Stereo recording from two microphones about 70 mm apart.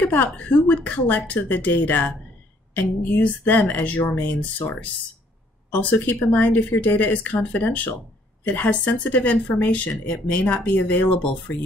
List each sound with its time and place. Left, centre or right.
0.1 s speech: left
5.7 s speech: left